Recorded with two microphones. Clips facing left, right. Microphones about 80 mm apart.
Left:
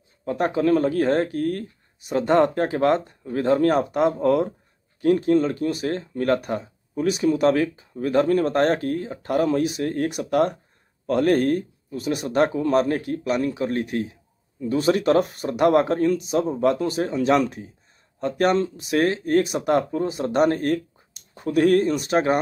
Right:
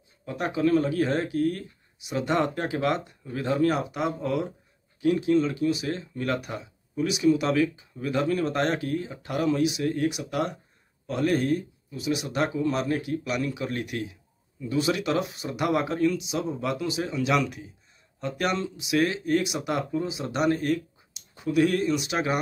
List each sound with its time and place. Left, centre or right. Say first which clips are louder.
0.2 s speech: left 4 dB; left